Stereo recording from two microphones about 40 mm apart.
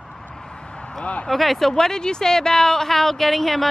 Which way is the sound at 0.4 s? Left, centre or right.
Left.